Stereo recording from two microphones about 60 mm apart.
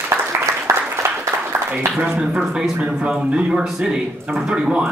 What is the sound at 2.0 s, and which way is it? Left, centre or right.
Speech, centre.